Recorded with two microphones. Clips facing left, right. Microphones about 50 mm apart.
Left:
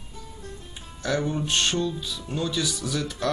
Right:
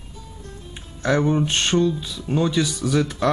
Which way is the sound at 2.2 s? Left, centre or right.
Right.